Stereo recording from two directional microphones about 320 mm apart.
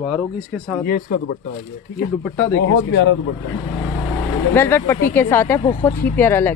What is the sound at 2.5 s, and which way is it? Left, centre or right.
Speech, left.